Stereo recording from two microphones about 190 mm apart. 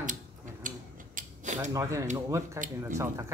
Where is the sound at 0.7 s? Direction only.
45° right (ahead or behind).